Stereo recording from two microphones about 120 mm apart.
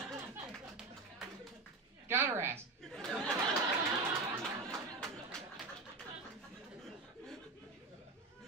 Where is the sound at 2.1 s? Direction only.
20° right (ahead or behind).